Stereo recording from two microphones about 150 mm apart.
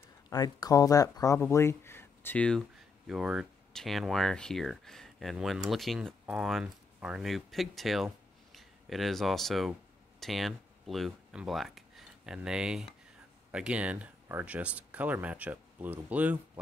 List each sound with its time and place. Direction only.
0.3 s speech: 25° left (ahead or behind); by 2.6 s 10° left (ahead or behind)
3.1 s speech: 5° right (ahead or behind)